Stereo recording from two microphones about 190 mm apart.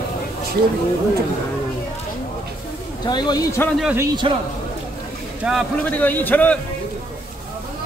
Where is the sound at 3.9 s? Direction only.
25° right (ahead or behind).